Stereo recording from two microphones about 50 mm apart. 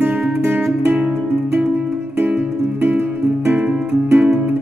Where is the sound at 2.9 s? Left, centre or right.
Right.